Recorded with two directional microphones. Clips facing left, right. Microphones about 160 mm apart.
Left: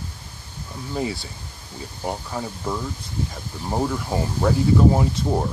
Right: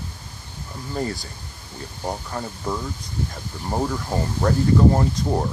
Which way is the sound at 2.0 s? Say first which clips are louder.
Left 1 dB; 5° left (ahead or behind).